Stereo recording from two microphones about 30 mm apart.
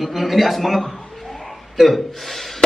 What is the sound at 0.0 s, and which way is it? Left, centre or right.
A man's voice, centre.